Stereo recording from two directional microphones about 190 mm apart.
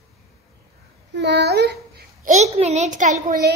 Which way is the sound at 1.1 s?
65° right (ahead or behind).